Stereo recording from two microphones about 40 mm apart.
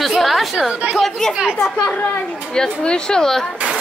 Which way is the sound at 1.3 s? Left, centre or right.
Centre.